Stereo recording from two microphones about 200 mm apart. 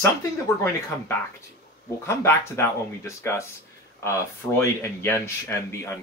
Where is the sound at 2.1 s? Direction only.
15° left (ahead or behind).